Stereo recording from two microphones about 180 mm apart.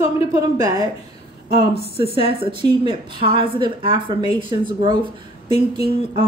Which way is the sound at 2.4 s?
25° right (ahead or behind).